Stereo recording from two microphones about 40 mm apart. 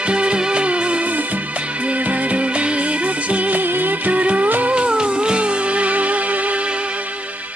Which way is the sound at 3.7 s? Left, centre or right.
Right.